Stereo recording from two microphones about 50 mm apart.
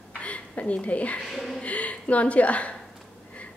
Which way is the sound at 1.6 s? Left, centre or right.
Left.